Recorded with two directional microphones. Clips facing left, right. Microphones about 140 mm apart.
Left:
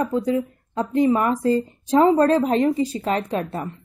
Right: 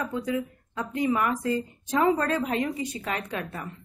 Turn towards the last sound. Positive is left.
turn(degrees=30)  # may be behind; listen again after turning